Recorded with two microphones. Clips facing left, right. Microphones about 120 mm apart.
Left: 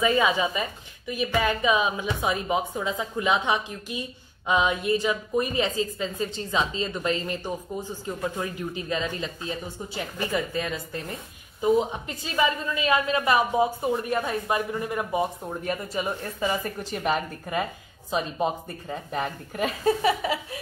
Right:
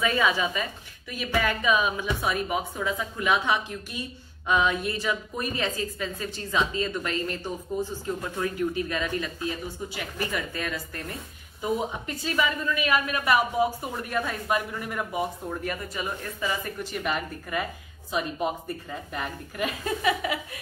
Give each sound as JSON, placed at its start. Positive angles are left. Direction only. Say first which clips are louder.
{"t": 0.0, "sound": "a woman's voice", "louder": "left 2 dB", "side_deg": 20}